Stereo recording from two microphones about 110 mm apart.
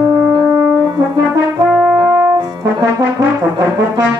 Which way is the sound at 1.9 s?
35° right (ahead or behind).